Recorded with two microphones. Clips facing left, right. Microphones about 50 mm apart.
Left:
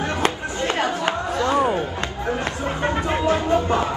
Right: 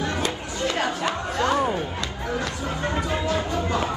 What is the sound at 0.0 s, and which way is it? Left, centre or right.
Chatter, left.